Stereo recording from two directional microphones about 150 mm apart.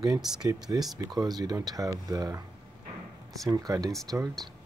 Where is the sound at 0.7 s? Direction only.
25° right (ahead or behind).